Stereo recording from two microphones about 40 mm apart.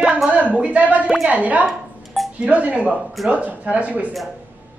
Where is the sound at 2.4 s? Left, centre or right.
Right.